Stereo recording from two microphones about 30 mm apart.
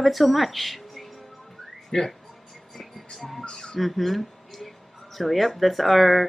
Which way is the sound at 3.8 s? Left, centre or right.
Centre.